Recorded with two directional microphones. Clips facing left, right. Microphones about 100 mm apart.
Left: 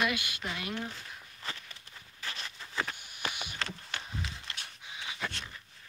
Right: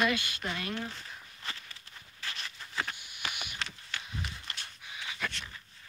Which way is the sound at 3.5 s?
45° left (ahead or behind).